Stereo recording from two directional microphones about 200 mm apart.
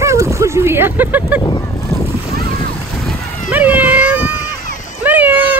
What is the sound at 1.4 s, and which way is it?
Boat, 20° left (ahead or behind).